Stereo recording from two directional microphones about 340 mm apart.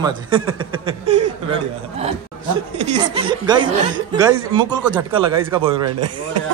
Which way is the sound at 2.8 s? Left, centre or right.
Centre.